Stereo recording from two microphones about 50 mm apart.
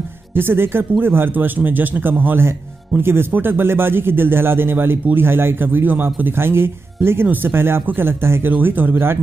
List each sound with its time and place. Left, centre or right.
0.3 s a man's voice: right
3.0 s a man's voice: right
8.5 s a man's voice: right